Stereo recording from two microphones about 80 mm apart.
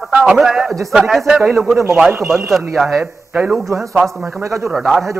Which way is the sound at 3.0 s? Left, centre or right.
Right.